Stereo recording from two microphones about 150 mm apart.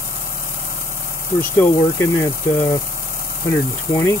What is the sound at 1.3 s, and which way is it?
Speech, 15° left (ahead or behind).